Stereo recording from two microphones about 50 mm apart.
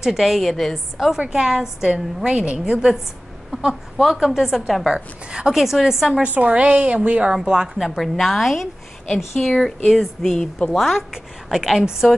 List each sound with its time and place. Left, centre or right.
0.0 s a woman's voice: centre
0.9 s a woman's voice: centre
4.9 s a woman's voice: centre
5.6 s a woman's voice: centre
6.2 s a woman's voice: right
7.3 s a woman's voice: centre
9.7 s a woman's voice: centre